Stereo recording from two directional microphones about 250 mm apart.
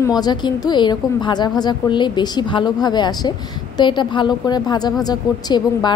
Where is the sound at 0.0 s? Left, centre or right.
Centre.